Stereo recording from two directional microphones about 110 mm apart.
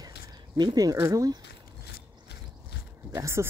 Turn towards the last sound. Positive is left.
turn(degrees=-25)  # may be behind; listen again after turning